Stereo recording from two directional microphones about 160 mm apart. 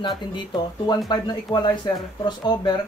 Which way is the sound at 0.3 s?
30° left (ahead or behind).